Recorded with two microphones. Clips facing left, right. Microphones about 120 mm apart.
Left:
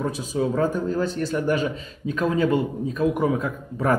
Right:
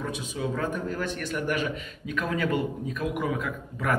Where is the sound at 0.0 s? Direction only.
35° left (ahead or behind).